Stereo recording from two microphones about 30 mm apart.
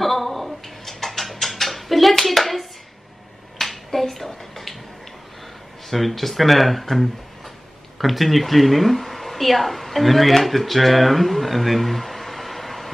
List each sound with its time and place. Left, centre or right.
0.0 s a sound: centre
3.5 s finger snapping: centre
5.9 s speech: centre